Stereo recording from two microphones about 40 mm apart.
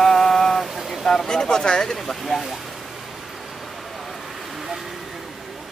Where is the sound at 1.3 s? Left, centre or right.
Centre.